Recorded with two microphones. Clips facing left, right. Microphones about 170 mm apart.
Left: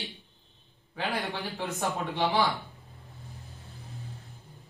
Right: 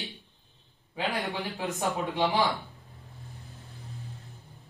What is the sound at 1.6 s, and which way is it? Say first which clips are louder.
Speech: even; 20° right (ahead or behind).